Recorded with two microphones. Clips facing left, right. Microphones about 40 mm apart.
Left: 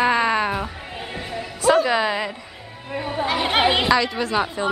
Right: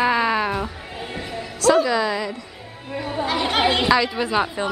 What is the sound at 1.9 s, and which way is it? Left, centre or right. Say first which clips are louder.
Speech: left 1 dB; left.